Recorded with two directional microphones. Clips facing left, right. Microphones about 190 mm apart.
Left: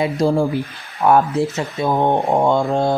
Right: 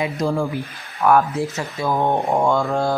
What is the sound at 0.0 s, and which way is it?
Speech, 30° left (ahead or behind).